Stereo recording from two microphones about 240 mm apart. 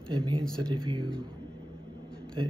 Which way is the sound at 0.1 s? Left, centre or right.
Centre.